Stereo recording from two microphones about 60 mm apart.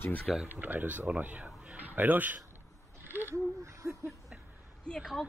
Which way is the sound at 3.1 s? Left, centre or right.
Right.